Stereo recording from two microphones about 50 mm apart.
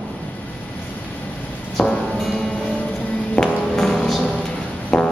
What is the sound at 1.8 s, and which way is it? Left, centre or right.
Music, centre.